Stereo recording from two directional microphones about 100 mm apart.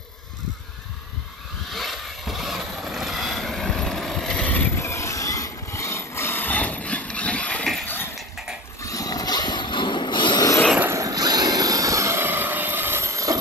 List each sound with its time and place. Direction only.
1.7 s vehicle: centre (ahead or behind)
4.7 s mechanisms: 25° left (ahead or behind); by 7.8 s 10° left (ahead or behind)
8.8 s a sound: 35° left (ahead or behind)
10.8 s vehicle: 30° right (ahead or behind)